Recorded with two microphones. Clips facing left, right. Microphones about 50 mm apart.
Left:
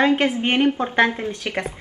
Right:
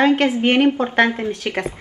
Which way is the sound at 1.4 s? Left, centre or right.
Centre.